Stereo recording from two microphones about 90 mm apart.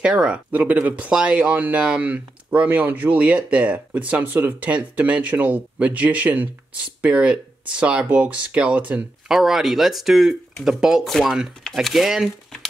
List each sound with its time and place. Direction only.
0.0 s speech: 10° right (ahead or behind)
9.3 s speech: 5° right (ahead or behind)